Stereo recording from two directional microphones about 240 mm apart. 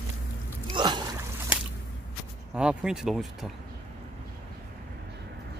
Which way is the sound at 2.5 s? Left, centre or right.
Centre.